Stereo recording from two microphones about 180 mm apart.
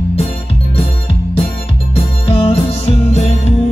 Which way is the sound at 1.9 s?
30° left (ahead or behind).